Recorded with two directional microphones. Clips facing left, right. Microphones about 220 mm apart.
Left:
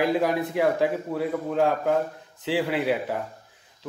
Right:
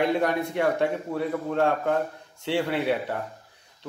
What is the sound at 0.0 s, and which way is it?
A man's voice, centre (ahead or behind).